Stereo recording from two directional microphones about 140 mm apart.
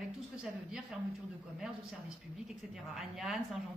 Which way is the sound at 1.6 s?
5° right (ahead or behind).